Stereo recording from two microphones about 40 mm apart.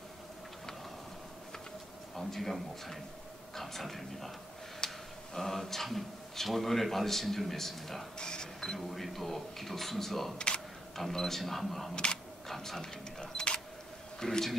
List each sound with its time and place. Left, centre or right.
2.1 s speech: centre
3.5 s speech: centre
8.2 s cash register: centre
8.7 s speech: centre
11.9 s speech: left
12.4 s speech: centre
13.2 s camera: left
14.2 s speech: centre